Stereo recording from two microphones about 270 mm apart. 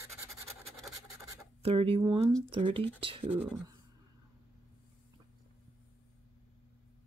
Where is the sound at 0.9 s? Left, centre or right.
Centre.